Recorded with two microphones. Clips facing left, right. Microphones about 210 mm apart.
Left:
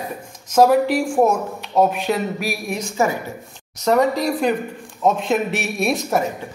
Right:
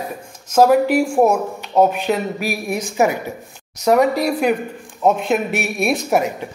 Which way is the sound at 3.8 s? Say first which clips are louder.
Right 2 dB; 10° right (ahead or behind).